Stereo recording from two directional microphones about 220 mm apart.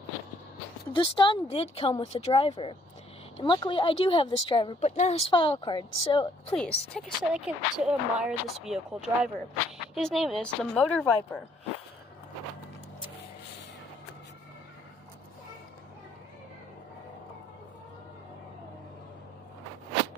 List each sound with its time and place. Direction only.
0.9 s speech: 20° left (ahead or behind)
6.5 s speech: 5° left (ahead or behind)